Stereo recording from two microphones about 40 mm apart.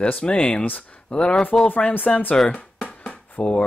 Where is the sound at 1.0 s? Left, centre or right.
Left.